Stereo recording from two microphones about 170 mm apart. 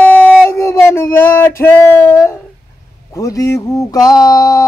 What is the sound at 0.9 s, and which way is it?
Speech, 15° left (ahead or behind).